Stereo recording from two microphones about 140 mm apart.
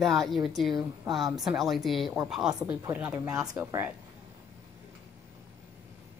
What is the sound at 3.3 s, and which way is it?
Speech, 30° right (ahead or behind).